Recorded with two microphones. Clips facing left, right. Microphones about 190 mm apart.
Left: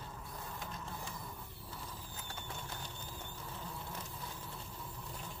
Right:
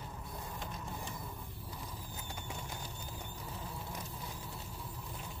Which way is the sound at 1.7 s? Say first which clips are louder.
Right 1 dB; 15° right (ahead or behind).